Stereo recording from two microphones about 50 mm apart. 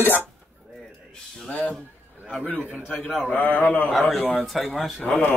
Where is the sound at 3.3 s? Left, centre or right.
Left.